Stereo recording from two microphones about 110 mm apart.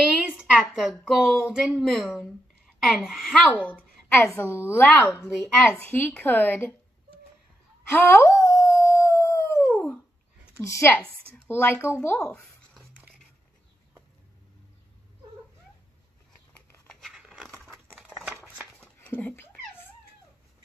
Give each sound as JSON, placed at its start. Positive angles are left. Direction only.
{"t": 0.1, "sound": "a sound", "side_deg": -5}
{"t": 0.7, "sound": "speech", "side_deg": 0}
{"t": 3.5, "sound": "a woman's voice", "side_deg": 15}
{"t": 5.2, "sound": "speech", "side_deg": 10}
{"t": 7.9, "sound": "howl", "side_deg": 25}
{"t": 9.7, "sound": "dog", "side_deg": 0}
{"t": 10.6, "sound": "speech", "side_deg": 25}
{"t": 12.2, "sound": "a sound", "side_deg": 5}
{"t": 16.8, "sound": "scissors", "side_deg": 5}
{"t": 17.6, "sound": "crumpling", "side_deg": 5}
{"t": 18.8, "sound": "dog", "side_deg": 15}